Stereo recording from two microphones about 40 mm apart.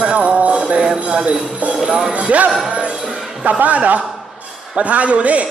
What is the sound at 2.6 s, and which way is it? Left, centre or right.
Music, right.